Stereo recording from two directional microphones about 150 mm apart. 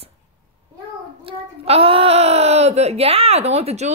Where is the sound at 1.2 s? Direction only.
40° right (ahead or behind).